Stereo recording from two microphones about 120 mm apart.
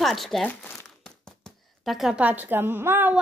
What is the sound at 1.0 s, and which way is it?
Speech, 5° left (ahead or behind).